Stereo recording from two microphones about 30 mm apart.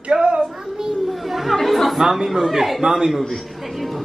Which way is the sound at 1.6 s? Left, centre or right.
Centre.